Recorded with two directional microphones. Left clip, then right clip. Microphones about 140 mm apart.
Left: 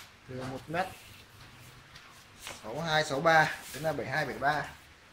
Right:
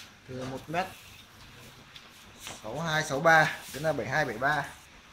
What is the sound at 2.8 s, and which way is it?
Speech, 60° right (ahead or behind).